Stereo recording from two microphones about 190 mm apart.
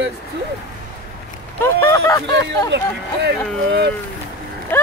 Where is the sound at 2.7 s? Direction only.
60° right (ahead or behind).